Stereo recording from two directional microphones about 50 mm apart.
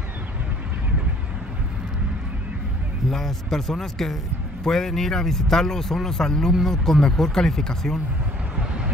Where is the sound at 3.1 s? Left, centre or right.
Centre.